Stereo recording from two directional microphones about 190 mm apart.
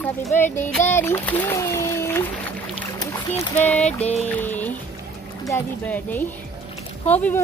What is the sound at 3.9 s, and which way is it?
Music, 35° left (ahead or behind).